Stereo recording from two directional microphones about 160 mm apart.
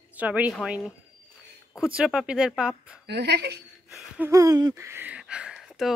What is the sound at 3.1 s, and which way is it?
Speech, 90° right.